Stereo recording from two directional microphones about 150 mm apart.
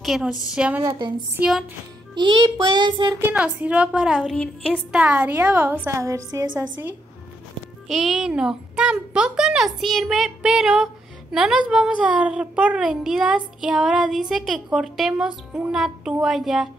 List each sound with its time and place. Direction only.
0.0 s a child's voice: 5° right (ahead or behind)
0.8 s a sound: 30° right (ahead or behind)
1.3 s a woman's voice: 5° right (ahead or behind)
2.1 s child singing: 30° right (ahead or behind)
3.2 s a woman's voice: 10° right (ahead or behind); by 4.8 s 5° left (ahead or behind)
4.9 s a woman's voice: 10° right (ahead or behind)
7.9 s a child's voice: centre (ahead or behind)